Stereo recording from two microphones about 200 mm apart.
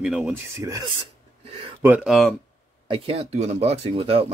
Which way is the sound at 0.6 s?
15° right (ahead or behind).